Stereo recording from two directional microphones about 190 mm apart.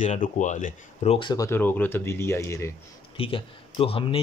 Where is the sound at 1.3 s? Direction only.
15° left (ahead or behind).